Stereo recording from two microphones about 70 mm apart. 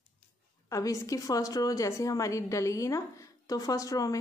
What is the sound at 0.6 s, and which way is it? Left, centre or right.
A woman's voice, left.